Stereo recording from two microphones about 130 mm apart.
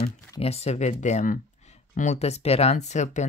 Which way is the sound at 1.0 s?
80° left.